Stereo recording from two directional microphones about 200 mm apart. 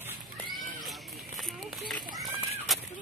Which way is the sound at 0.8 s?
Centre (ahead or behind).